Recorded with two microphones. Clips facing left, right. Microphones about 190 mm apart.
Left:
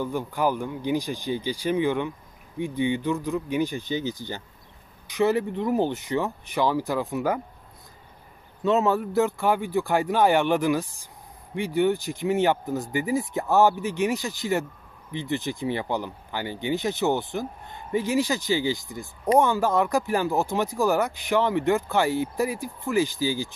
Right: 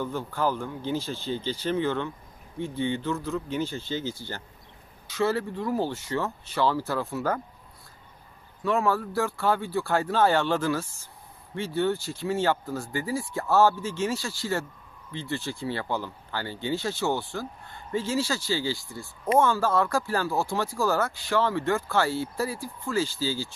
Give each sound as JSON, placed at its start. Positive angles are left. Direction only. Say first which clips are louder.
{"t": 0.0, "sound": "speech", "louder": "left 3 dB", "side_deg": 15}
{"t": 8.6, "sound": "speech", "louder": "left 3 dB", "side_deg": 20}